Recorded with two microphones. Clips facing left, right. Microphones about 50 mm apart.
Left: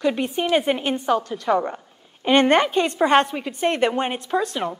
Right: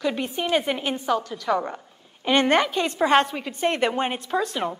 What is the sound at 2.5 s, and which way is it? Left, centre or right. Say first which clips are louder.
Speech: left 3 dB; left.